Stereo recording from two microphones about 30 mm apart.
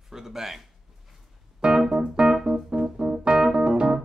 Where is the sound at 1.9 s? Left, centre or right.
Right.